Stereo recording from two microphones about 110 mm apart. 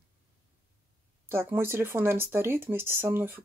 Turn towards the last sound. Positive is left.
turn(degrees=-20)  # may be behind; listen again after turning